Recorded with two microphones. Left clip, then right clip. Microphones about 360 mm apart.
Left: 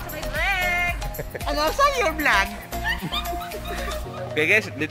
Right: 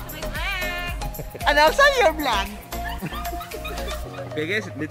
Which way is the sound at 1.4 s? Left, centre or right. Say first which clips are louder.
Right 5 dB; right.